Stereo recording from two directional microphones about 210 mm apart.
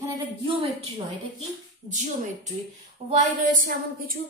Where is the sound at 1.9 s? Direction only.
35° right (ahead or behind).